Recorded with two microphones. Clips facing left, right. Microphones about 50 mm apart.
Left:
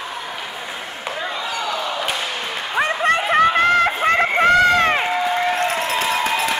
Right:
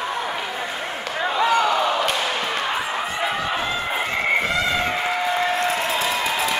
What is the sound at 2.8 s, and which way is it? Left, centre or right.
Chicken, left.